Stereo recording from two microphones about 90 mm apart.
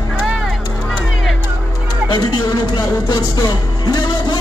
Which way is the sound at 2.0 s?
55° left (ahead or behind).